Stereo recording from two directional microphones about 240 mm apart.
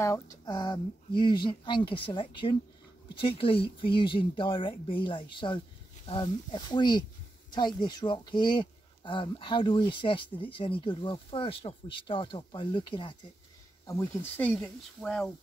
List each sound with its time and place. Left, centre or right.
0.0 s speech: centre
13.8 s speech: centre